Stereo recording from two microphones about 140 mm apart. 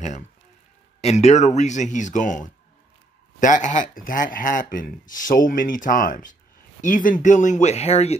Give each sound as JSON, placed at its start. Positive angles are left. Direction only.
{"t": 1.0, "sound": "speech", "side_deg": 55}